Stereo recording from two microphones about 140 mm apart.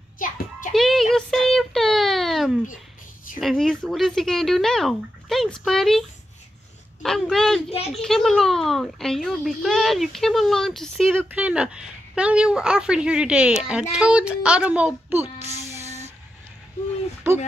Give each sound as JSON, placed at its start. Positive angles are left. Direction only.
{"t": 0.2, "sound": "music", "side_deg": 70}
{"t": 0.7, "sound": "a sound", "side_deg": 0}
{"t": 3.3, "sound": "a child's voice", "side_deg": 0}
{"t": 7.7, "sound": "speech", "side_deg": 45}
{"t": 8.0, "sound": "a child's voice", "side_deg": 0}
{"t": 11.2, "sound": "a woman's voice", "side_deg": -10}
{"t": 15.8, "sound": "vehicle", "side_deg": -50}